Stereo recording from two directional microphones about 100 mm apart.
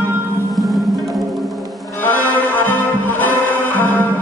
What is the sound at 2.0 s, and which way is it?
Music, 15° left (ahead or behind).